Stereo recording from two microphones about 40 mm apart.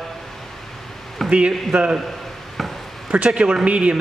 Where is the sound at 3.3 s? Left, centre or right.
Right.